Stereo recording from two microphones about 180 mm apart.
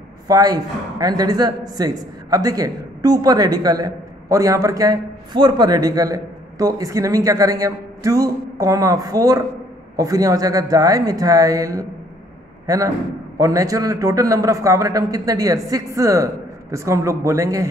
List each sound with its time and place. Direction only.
0.3 s a man's voice: 20° right (ahead or behind)